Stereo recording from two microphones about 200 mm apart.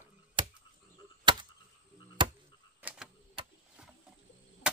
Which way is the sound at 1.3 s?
20° right (ahead or behind).